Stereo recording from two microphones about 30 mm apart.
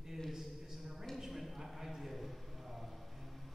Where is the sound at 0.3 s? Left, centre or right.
Centre.